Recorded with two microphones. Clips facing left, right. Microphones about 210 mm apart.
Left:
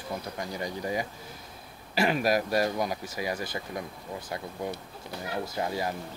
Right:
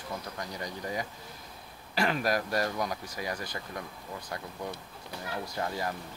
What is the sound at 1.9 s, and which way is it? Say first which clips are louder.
Speech: left 4 dB; 10° left (ahead or behind).